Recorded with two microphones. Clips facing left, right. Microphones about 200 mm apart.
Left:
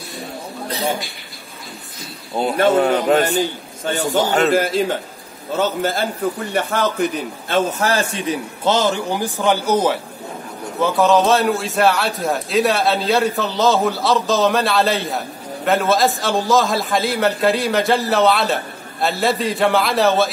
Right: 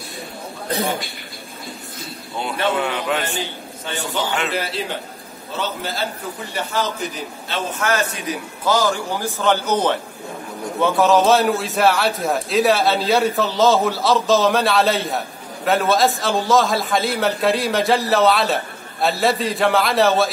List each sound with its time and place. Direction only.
2.3 s a man's voice: 40° left (ahead or behind)
7.8 s a man's voice: 30° left (ahead or behind); by 20.2 s centre (ahead or behind)